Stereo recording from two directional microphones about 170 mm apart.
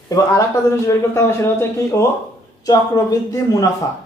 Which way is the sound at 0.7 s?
15° left (ahead or behind).